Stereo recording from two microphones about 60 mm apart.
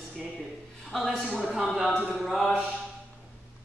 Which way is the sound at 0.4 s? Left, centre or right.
Centre.